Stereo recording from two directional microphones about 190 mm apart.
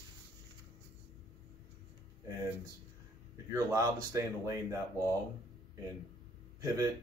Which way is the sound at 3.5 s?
10° right (ahead or behind).